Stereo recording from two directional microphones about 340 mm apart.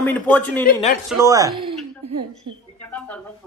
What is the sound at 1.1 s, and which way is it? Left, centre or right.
Speech, centre.